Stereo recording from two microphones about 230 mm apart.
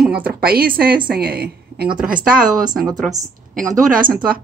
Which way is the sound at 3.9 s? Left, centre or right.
Right.